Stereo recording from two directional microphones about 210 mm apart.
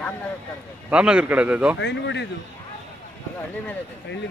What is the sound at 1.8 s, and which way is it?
Speech, 55° left (ahead or behind).